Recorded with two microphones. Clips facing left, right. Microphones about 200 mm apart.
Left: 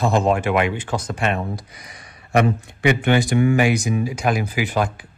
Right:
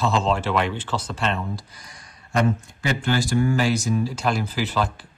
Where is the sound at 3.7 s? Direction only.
15° left (ahead or behind).